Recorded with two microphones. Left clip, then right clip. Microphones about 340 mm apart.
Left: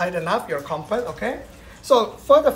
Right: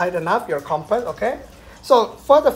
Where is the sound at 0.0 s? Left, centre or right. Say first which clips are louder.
Right 3 dB; centre.